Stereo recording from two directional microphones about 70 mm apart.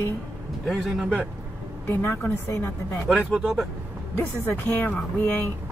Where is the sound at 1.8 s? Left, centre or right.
Left.